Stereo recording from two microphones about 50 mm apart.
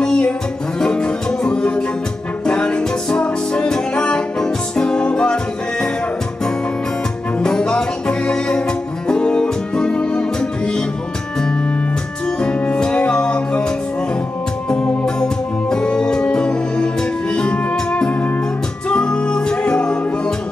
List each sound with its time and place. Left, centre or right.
0.0 s music: centre
7.3 s music: centre
12.4 s music: centre
14.7 s music: centre